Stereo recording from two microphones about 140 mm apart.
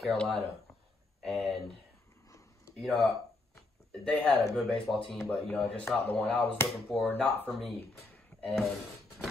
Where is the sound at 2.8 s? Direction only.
Centre (ahead or behind).